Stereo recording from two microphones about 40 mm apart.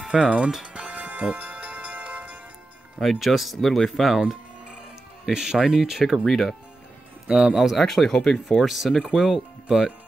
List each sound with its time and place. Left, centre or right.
0.0 s music: right
0.7 s music: right
3.0 s speech: centre
3.5 s speech: centre
5.3 s speech: centre
6.1 s speech: centre
7.2 s speech: centre
7.5 s speech: centre
7.8 s speech: centre
8.6 s speech: centre